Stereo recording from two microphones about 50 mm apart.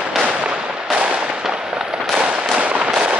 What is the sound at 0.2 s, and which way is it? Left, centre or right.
Firecracker, centre.